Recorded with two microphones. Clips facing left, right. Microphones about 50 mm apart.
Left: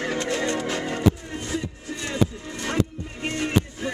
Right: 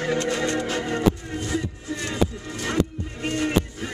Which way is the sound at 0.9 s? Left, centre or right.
Centre.